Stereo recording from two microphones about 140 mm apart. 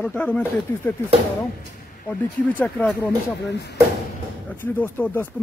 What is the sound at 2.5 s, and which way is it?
Speech, 10° left (ahead or behind).